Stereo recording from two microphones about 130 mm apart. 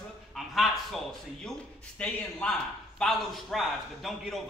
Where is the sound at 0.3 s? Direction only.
Centre (ahead or behind).